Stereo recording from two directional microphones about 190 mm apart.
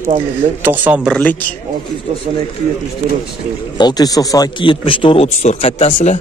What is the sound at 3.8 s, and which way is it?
Speech, 20° left (ahead or behind).